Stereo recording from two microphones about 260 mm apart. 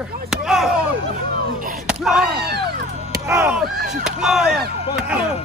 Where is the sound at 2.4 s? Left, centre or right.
Right.